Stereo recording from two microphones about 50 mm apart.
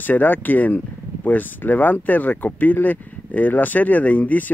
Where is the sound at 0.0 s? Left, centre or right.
Left.